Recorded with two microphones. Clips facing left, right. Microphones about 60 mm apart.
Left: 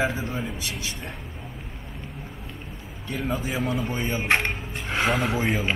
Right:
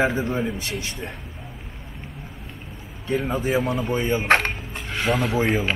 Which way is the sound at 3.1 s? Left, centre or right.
Right.